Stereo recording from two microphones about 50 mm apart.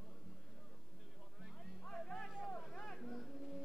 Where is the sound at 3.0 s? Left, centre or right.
Centre.